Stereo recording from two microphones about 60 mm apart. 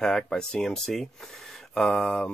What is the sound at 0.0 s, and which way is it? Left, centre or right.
Speech, centre.